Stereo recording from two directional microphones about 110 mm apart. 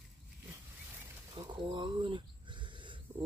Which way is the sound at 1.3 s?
45° right (ahead or behind).